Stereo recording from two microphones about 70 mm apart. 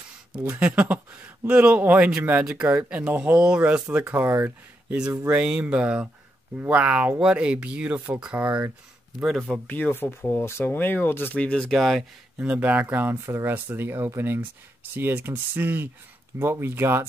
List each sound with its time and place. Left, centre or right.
0.4 s speech: right
4.1 s speech: right
5.3 s speech: centre
9.2 s speech: centre
9.7 s speech: left
11.3 s speech: centre
11.7 s speech: centre
12.4 s speech: right